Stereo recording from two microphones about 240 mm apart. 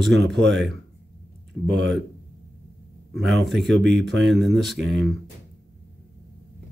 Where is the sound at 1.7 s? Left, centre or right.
Right.